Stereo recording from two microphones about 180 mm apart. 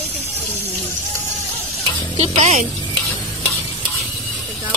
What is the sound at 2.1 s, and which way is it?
Speech, 35° right (ahead or behind).